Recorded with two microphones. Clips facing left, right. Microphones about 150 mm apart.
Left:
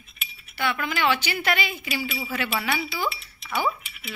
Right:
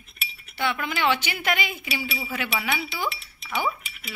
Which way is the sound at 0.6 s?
15° right (ahead or behind).